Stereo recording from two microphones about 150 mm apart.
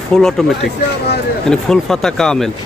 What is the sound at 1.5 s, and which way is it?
Speech, 5° left (ahead or behind).